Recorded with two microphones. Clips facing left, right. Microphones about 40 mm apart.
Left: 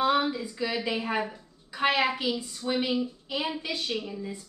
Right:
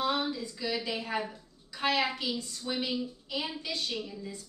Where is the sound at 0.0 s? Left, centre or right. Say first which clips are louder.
Left 6 dB; left.